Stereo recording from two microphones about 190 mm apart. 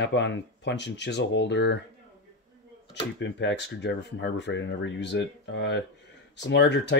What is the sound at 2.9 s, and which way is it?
Speech, 70° left (ahead or behind).